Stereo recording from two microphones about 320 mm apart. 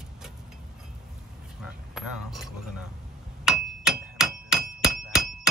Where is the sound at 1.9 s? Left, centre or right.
Centre.